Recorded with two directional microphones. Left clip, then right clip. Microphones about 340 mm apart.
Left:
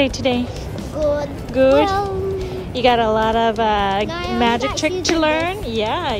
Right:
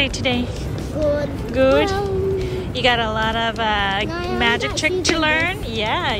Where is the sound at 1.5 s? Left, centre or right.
Centre.